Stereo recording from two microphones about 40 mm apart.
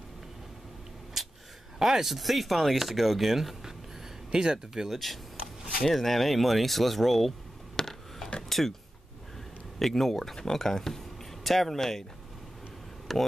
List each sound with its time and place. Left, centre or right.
1.8 s speech: centre
4.3 s speech: centre
4.8 s speech: centre
7.7 s a sound: centre
9.8 s speech: centre
13.1 s speech: centre